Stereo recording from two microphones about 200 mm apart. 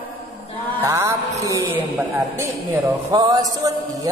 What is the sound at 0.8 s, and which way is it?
A man's voice, 15° right (ahead or behind).